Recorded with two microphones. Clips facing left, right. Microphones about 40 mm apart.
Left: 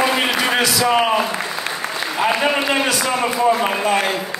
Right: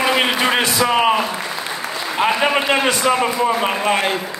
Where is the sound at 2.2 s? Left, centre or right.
Right.